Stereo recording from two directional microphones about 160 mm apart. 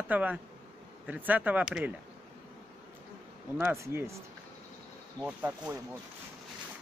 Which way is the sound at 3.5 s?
15° right (ahead or behind).